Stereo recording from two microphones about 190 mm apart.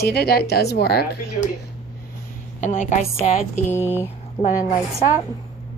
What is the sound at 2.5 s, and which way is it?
A woman's voice, 40° left (ahead or behind).